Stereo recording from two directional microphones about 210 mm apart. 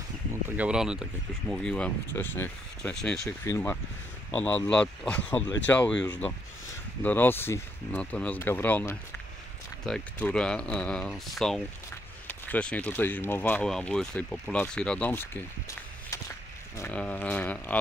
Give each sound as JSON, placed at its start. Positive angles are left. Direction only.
{"t": 0.3, "sound": "speech", "side_deg": -5}
{"t": 16.7, "sound": "speech", "side_deg": 10}